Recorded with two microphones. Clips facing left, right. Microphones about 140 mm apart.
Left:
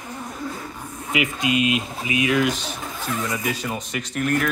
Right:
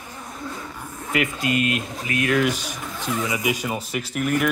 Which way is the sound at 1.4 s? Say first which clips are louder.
Left 3 dB; 50° right (ahead or behind).